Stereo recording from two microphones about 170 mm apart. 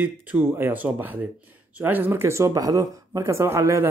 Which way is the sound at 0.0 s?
10° right (ahead or behind).